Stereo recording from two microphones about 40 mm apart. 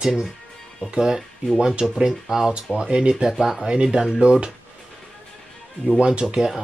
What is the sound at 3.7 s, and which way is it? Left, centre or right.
Speech, right.